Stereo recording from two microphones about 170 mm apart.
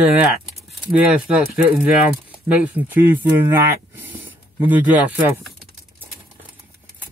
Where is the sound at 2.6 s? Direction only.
10° right (ahead or behind).